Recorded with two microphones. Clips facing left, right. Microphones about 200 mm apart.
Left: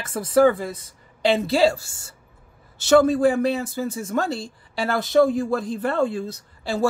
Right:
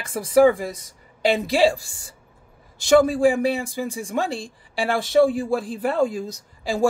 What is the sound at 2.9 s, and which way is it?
Speech, 10° right (ahead or behind).